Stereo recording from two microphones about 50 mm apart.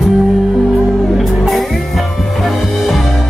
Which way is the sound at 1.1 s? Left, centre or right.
Centre.